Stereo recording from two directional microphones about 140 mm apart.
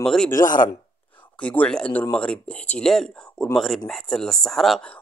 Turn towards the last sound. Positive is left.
turn(degrees=5)  # may be behind; listen again after turning